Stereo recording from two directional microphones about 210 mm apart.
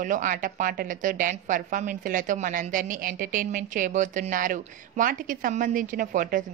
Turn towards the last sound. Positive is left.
turn(degrees=-40)  # may be behind; listen again after turning